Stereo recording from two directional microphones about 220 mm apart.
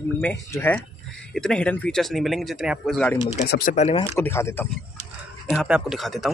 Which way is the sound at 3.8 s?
25° left (ahead or behind).